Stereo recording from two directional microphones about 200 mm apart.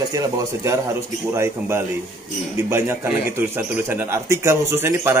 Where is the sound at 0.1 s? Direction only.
15° right (ahead or behind).